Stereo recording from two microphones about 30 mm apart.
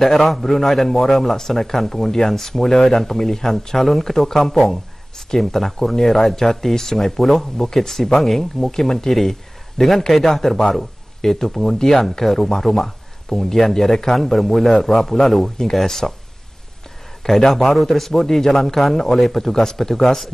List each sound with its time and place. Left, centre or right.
0.0 s a man's voice: centre
17.2 s a man's voice: centre
19.5 s speech: centre